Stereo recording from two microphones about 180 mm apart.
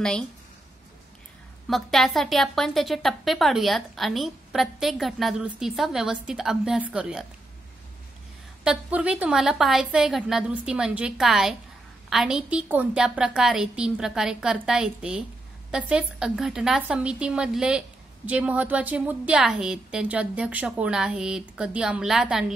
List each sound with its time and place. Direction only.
1.7 s a woman's voice: centre (ahead or behind)
8.6 s a woman's voice: 5° right (ahead or behind)